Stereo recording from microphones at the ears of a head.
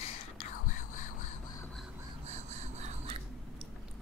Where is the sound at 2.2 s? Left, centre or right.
Right.